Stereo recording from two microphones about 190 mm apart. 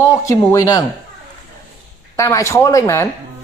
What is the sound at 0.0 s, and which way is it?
Speech, 15° left (ahead or behind).